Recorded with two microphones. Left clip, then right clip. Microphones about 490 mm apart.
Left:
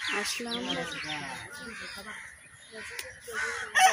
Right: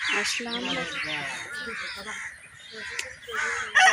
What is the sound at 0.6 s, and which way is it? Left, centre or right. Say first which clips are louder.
Speech: right 4 dB; left.